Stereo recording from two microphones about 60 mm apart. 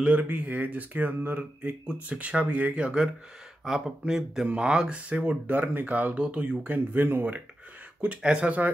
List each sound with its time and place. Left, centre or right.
0.0 s speech: right
8.0 s speech: centre